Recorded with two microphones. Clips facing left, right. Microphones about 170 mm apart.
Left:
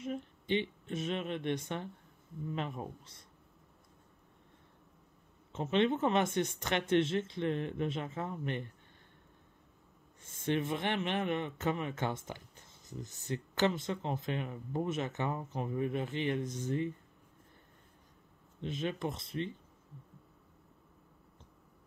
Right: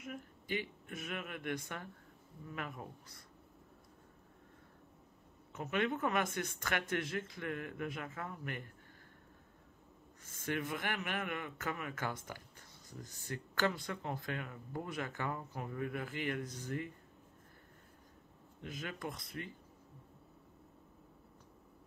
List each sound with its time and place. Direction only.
0.0 s speech: 25° left (ahead or behind)
5.5 s speech: 25° left (ahead or behind)
10.2 s speech: 25° left (ahead or behind)
18.6 s speech: 25° left (ahead or behind)